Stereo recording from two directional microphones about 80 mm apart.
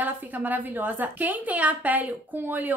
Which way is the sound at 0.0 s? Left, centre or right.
Right.